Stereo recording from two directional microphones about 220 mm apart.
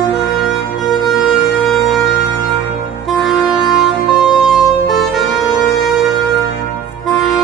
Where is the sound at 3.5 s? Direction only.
Centre (ahead or behind).